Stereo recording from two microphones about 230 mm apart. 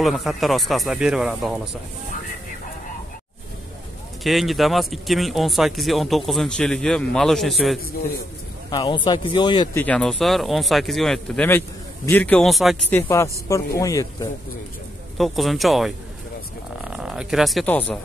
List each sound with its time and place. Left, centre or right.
0.0 s speech: centre
4.2 s speech: centre
8.6 s speech: centre
9.8 s speech: centre
13.5 s speech: centre
15.1 s speech: centre